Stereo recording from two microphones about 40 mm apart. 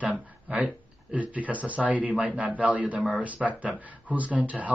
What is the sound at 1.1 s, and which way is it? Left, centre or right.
Speech, right.